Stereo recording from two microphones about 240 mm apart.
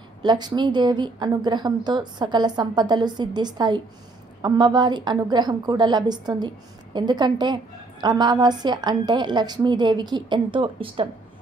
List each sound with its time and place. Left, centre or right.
0.2 s a woman's voice: centre